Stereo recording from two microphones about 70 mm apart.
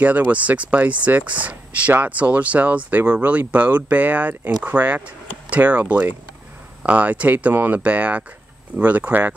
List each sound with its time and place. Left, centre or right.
0.0 s speech: right